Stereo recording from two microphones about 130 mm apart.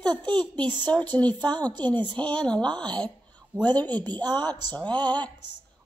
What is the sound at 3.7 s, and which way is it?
Speech, 10° left (ahead or behind).